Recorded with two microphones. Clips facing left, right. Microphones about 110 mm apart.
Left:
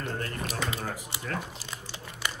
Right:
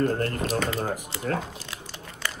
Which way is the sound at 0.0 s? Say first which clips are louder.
Right 9 dB; 45° right (ahead or behind).